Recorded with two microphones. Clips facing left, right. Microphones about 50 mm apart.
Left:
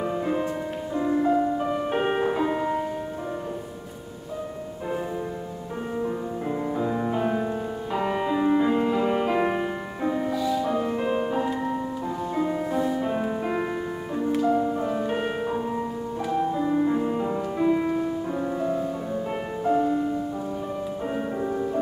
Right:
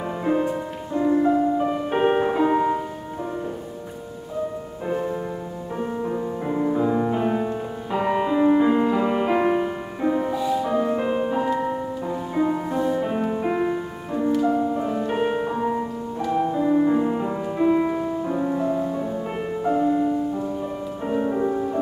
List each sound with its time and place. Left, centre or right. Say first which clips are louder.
0.2 s music: right 4 dB; centre
5.9 s music: left 1 dB; centre
10.3 s music: right 2 dB; right
10.6 s music: right 3 dB; centre